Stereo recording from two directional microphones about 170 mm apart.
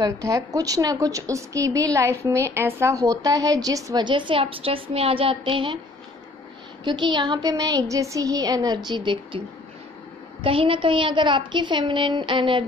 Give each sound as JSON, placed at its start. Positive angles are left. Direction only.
{"t": 0.0, "sound": "a woman's voice", "side_deg": -20}
{"t": 6.8, "sound": "a woman's voice", "side_deg": -25}
{"t": 10.4, "sound": "a woman's voice", "side_deg": -30}